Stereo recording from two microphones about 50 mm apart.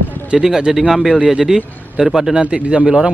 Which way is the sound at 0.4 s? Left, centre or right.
Centre.